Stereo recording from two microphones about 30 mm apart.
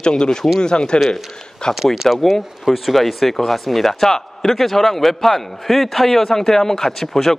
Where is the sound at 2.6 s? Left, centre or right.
Centre.